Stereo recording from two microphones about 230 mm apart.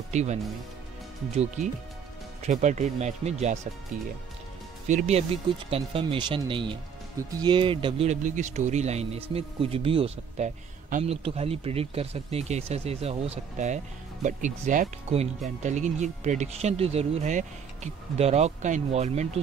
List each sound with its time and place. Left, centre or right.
0.1 s speech: right
4.8 s speech: right